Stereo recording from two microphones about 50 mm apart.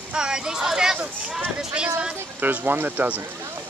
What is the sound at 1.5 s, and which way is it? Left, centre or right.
Speech, right.